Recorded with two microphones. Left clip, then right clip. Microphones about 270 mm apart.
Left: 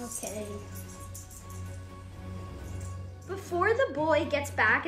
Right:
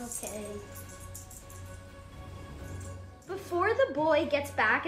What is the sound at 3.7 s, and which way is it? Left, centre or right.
Speech, right.